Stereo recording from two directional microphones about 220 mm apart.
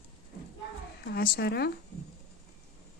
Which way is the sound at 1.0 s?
45° left (ahead or behind).